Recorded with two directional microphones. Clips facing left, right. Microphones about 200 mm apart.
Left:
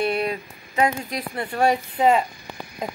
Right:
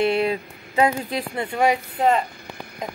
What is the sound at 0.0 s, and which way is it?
A woman's voice, 25° right (ahead or behind).